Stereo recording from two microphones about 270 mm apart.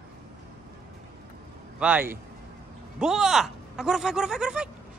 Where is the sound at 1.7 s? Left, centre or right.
Centre.